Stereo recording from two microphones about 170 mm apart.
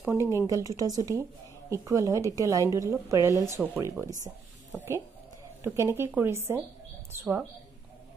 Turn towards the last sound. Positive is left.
turn(degrees=-10)  # may be behind; listen again after turning